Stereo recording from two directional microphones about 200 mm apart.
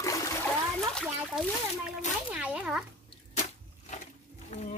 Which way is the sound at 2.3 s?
5° right (ahead or behind).